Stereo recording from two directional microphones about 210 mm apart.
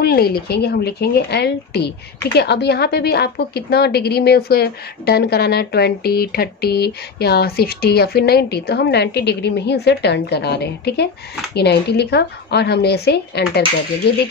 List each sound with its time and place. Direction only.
0.0 s a woman's voice: 50° left (ahead or behind)